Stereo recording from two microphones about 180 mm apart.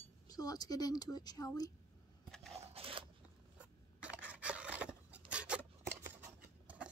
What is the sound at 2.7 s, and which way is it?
Scissors, 30° right (ahead or behind).